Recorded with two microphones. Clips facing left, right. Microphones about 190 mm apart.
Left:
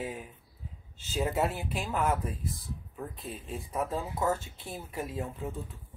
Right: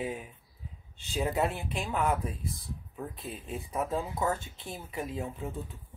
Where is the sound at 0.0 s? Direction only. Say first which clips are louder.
Right 2 dB; centre (ahead or behind).